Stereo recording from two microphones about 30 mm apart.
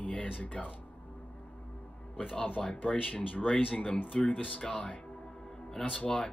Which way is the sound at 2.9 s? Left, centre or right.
Left.